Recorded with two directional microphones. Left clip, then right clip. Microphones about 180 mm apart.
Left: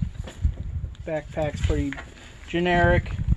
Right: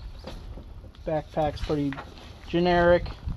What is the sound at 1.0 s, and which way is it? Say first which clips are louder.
Speech: right 1 dB; 35° right (ahead or behind).